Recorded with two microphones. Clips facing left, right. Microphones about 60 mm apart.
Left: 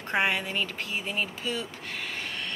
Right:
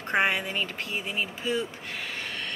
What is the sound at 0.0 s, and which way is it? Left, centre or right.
Speech, right.